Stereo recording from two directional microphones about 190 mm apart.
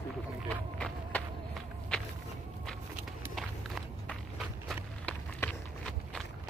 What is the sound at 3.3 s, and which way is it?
Walk, centre (ahead or behind).